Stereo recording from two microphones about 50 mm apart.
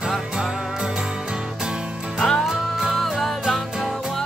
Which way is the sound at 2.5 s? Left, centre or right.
Centre.